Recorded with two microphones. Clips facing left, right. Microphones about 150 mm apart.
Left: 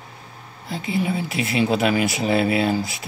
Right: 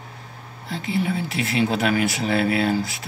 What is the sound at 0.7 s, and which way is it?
Speech, 15° left (ahead or behind).